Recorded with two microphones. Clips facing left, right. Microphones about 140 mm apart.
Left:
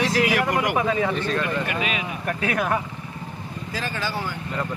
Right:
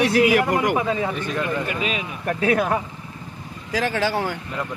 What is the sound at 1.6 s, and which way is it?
Speech, 30° right (ahead or behind).